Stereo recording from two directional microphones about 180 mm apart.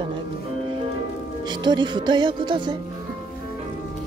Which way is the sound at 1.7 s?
25° right (ahead or behind).